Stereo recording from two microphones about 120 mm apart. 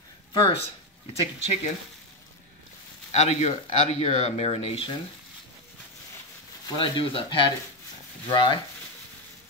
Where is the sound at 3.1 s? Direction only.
65° left (ahead or behind).